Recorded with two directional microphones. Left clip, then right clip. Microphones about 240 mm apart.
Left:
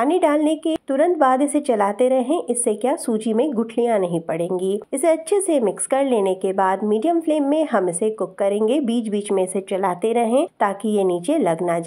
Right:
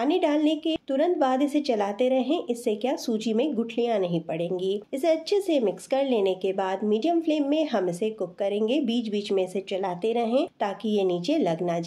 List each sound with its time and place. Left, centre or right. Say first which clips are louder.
0.0 s a woman's voice: left 6 dB; left